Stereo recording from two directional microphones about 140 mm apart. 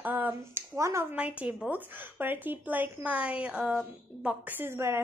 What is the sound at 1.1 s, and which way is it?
A child's voice, 10° right (ahead or behind).